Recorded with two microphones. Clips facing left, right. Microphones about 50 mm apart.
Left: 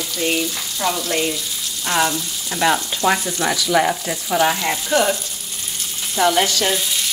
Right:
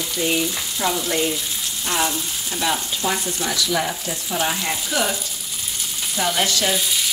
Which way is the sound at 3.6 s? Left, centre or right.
Left.